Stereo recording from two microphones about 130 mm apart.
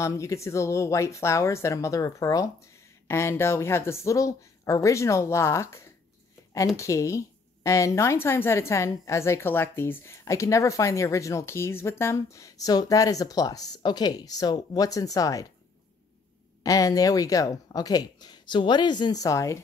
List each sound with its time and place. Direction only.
0.0 s a woman's voice: 25° left (ahead or behind)
16.6 s a woman's voice: 25° left (ahead or behind)